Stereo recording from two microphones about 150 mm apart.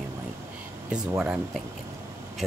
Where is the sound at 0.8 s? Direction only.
5° right (ahead or behind).